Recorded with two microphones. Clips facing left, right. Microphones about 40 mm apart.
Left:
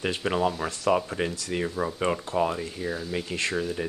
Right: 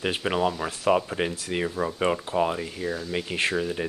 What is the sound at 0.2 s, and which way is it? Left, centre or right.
Speech, centre.